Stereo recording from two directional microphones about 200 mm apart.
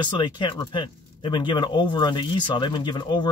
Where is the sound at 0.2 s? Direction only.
20° left (ahead or behind).